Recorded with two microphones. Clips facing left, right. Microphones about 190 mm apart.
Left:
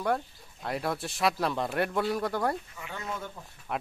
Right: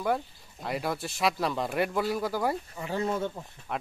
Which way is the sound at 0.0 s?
Centre (ahead or behind).